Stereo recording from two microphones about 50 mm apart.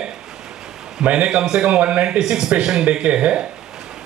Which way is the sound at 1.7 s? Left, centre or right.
Right.